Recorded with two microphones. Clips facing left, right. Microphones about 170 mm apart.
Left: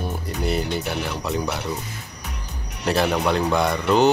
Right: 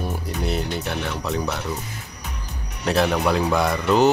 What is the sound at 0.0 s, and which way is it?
Speech, centre (ahead or behind).